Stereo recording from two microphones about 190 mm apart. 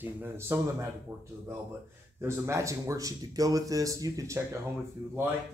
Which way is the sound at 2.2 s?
15° right (ahead or behind).